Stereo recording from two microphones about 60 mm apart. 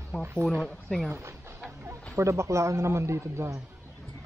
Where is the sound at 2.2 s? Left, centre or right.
Right.